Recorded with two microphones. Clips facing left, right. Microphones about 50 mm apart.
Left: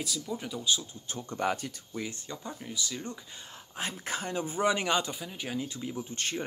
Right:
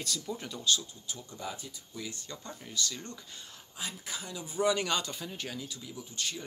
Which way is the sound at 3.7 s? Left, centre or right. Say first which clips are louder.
Left 6 dB; left.